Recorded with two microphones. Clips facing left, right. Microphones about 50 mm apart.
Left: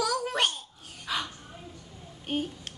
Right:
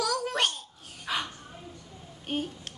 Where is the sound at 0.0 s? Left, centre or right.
Centre.